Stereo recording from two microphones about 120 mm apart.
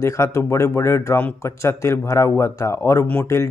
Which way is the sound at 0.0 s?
25° left (ahead or behind).